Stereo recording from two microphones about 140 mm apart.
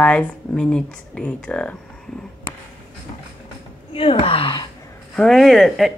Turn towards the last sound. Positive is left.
turn(degrees=0)  # may be behind; listen again after turning